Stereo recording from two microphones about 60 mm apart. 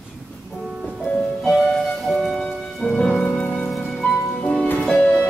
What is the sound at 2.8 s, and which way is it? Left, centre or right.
Music, centre.